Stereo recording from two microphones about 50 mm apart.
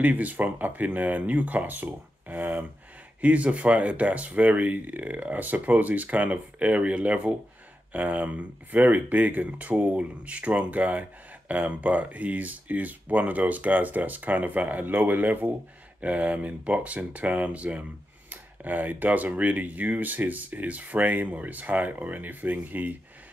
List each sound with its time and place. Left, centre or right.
0.0 s speech: right